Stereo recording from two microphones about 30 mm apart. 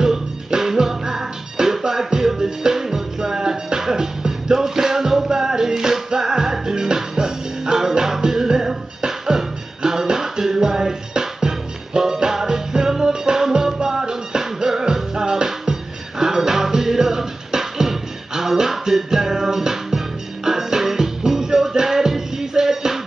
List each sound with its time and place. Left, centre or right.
0.0 s music: centre